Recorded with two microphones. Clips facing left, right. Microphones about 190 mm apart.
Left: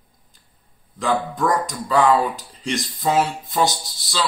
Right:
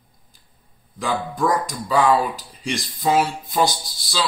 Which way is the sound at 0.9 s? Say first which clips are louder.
Left 2 dB; 10° right (ahead or behind).